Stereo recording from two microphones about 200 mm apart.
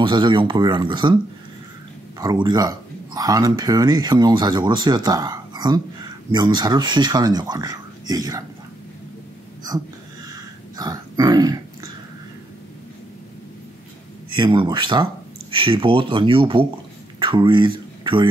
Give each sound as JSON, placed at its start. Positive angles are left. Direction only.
{"t": 0.0, "sound": "speech", "side_deg": -25}
{"t": 2.1, "sound": "speech", "side_deg": -20}
{"t": 9.7, "sound": "a sound", "side_deg": -15}
{"t": 14.3, "sound": "speech", "side_deg": -25}